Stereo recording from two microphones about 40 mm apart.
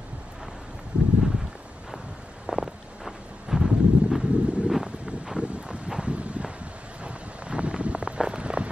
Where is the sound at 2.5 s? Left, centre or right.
Centre.